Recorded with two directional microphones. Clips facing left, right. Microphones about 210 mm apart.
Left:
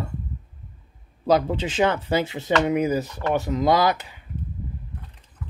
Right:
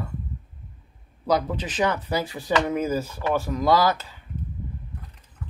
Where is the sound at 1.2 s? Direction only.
25° left (ahead or behind).